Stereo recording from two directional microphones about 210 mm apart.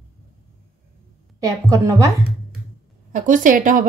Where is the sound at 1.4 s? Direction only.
15° right (ahead or behind).